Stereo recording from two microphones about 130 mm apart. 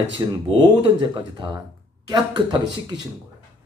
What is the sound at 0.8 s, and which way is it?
Speech, 40° right (ahead or behind).